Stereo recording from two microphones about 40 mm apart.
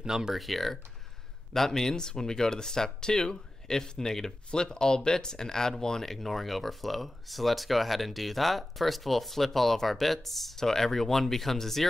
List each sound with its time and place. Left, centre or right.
0.0 s speech: centre
0.3 s speech: centre